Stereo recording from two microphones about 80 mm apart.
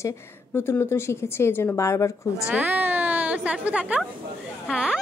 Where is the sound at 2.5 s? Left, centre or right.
Right.